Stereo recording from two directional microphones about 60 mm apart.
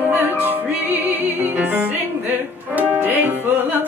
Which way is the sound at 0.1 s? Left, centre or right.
Right.